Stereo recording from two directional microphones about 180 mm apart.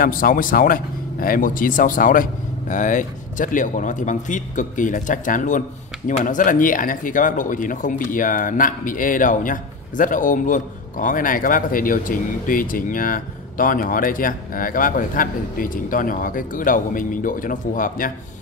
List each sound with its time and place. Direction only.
0.0 s speech: 50° left (ahead or behind)